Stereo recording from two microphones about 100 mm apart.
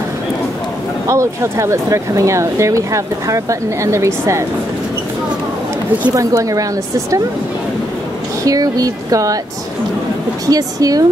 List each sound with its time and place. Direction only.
1.0 s speech: 30° right (ahead or behind)
6.1 s speech: 35° right (ahead or behind)
8.5 s speech: 35° right (ahead or behind)
10.4 s speech: 35° right (ahead or behind)